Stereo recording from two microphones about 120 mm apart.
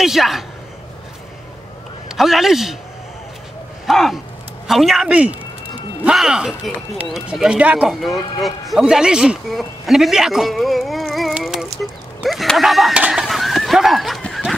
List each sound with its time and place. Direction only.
0.0 s speech: centre (ahead or behind)
2.0 s a man's voice: centre (ahead or behind)
3.8 s speech: centre (ahead or behind)
5.1 s a sound: 10° right (ahead or behind)
6.1 s speech: 5° right (ahead or behind)
13.0 s horse: 5° right (ahead or behind)